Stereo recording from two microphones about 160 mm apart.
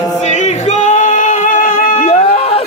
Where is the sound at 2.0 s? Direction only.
40° left (ahead or behind).